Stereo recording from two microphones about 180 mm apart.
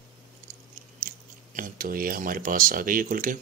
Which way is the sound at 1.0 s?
50° right (ahead or behind).